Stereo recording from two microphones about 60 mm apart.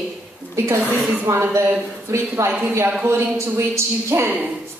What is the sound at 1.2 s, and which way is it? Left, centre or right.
Speech, right.